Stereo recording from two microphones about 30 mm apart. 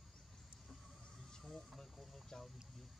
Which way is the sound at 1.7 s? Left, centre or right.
Centre.